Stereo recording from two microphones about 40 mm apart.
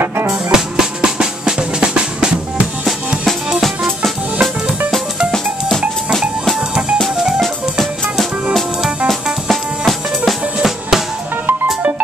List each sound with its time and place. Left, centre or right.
0.3 s drum: centre
3.3 s music: centre
7.3 s music: centre